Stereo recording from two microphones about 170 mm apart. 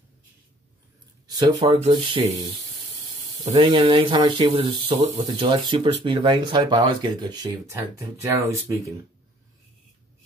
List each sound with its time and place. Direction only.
1.2 s speech: 25° right (ahead or behind)